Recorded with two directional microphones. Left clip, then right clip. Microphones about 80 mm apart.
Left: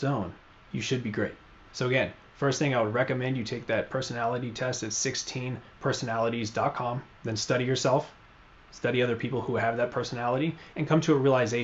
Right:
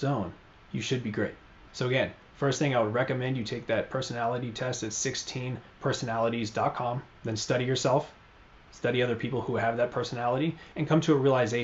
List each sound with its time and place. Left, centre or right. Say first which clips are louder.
0.0 s speech: even; centre